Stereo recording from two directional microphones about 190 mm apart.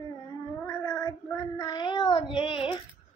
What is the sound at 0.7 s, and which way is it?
Child singing, 20° left (ahead or behind).